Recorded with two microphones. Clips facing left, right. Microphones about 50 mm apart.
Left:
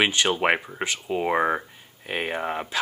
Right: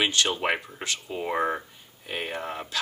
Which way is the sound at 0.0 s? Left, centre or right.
Left.